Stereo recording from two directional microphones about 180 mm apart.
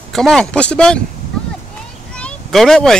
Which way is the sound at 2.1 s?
5° left (ahead or behind).